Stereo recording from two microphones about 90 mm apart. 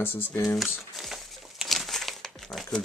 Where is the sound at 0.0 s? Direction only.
25° left (ahead or behind).